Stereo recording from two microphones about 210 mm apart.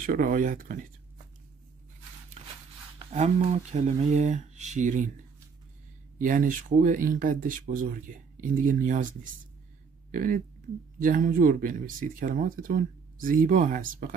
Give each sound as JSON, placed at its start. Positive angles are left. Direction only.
{"t": 0.0, "sound": "speech", "side_deg": -40}
{"t": 2.4, "sound": "a sound", "side_deg": -30}
{"t": 3.1, "sound": "speech", "side_deg": -35}
{"t": 6.1, "sound": "speech", "side_deg": -40}